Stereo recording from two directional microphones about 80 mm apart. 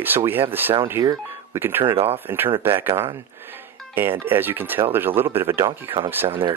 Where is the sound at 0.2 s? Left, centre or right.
Right.